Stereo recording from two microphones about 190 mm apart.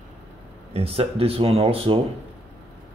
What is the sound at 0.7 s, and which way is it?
Speech, 30° right (ahead or behind).